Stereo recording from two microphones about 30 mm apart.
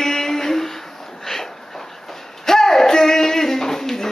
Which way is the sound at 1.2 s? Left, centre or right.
Centre.